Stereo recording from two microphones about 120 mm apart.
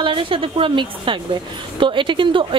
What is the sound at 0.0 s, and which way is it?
A woman's voice, 45° right (ahead or behind).